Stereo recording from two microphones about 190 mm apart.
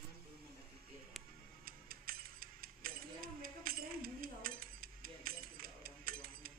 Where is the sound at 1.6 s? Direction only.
50° right (ahead or behind).